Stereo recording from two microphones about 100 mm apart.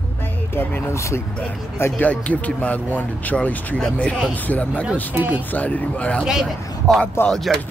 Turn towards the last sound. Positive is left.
turn(degrees=0)  # may be behind; listen again after turning